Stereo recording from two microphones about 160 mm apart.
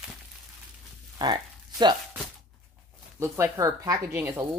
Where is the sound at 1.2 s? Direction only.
25° right (ahead or behind).